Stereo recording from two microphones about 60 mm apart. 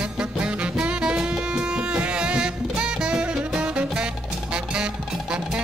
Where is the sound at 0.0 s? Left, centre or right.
Centre.